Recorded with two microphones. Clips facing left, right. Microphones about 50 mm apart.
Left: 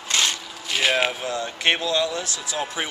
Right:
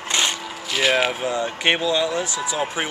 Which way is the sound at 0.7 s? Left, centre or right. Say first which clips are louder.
Right 2 dB; centre.